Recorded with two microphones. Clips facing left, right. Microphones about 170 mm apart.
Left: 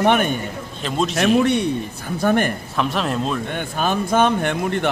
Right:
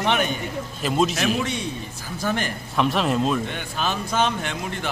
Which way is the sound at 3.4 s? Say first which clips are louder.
Left 5 dB; 50° left (ahead or behind).